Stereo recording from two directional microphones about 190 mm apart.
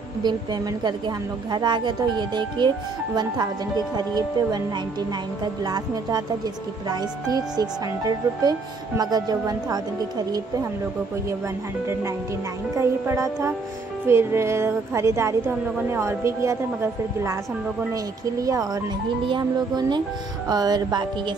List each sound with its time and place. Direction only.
0.2 s a woman's voice: 20° right (ahead or behind)
5.6 s a woman's voice: 20° right (ahead or behind)
12.7 s a woman's voice: 15° right (ahead or behind)
18.4 s a woman's voice: 20° right (ahead or behind)